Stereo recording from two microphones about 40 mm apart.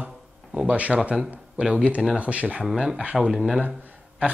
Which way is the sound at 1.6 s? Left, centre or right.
Centre.